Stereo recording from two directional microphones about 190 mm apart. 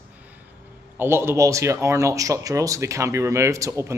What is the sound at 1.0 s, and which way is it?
Speech, 10° right (ahead or behind).